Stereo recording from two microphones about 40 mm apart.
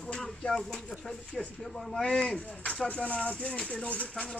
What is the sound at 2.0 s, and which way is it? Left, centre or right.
Speech, left.